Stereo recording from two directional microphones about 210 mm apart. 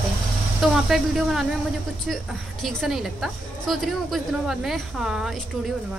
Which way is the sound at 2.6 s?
Centre (ahead or behind).